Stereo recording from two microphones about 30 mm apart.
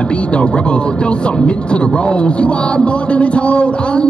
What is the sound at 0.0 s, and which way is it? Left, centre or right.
Speech, left.